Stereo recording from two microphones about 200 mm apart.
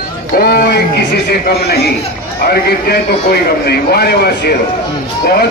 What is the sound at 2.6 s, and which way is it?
A man's voice, 50° left (ahead or behind).